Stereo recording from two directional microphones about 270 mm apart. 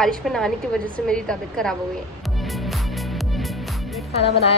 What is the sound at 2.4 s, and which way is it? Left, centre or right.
Music, centre.